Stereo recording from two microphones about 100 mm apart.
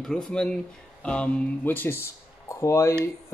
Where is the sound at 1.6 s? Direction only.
20° left (ahead or behind).